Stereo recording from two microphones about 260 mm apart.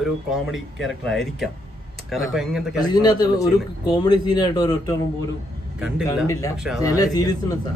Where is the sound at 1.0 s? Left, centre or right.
Centre.